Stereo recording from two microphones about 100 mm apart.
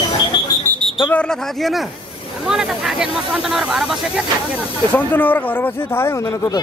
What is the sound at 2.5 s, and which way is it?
Speech, 5° right (ahead or behind).